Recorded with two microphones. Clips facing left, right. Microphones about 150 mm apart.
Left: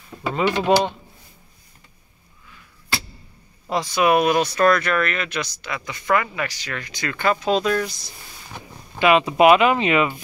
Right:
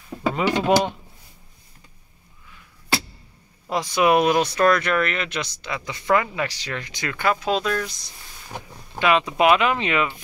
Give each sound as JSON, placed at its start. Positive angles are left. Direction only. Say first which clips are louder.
{"t": 0.4, "sound": "speech", "louder": "left 2 dB", "side_deg": -5}
{"t": 3.7, "sound": "speech", "louder": "even", "side_deg": -20}
{"t": 7.2, "sound": "speech", "louder": "left 2 dB", "side_deg": -5}